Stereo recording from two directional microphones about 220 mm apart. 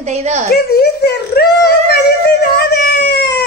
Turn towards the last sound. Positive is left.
turn(degrees=50)  # may be behind; listen again after turning